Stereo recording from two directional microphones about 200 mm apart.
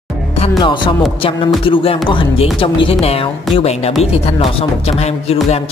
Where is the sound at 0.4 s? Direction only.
25° left (ahead or behind).